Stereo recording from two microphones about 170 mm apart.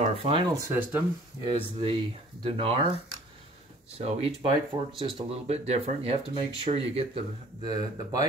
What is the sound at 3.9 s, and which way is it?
Speech, 35° right (ahead or behind).